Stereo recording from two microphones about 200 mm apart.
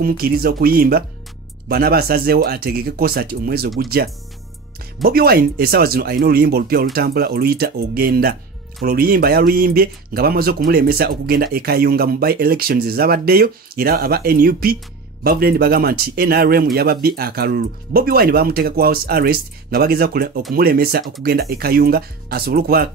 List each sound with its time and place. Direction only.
0.0 s speech: 50° right (ahead or behind)
5.0 s speech: 50° right (ahead or behind)